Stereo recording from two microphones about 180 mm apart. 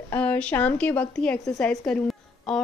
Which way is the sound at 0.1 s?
10° left (ahead or behind).